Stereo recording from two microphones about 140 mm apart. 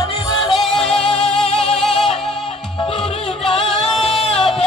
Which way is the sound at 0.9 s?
45° left (ahead or behind).